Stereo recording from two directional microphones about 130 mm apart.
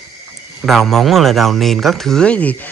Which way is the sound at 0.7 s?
Centre (ahead or behind).